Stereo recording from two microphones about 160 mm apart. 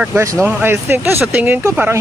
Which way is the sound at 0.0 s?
15° right (ahead or behind).